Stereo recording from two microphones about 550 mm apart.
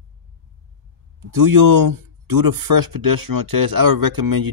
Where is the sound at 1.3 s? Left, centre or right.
Right.